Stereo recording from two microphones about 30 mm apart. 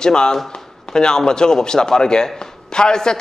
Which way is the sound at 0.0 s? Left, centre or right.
Left.